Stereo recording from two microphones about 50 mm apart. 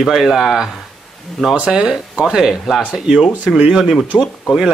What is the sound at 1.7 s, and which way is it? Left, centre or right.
Speech, centre.